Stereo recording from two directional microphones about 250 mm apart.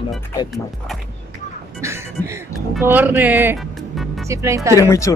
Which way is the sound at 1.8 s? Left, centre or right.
Centre.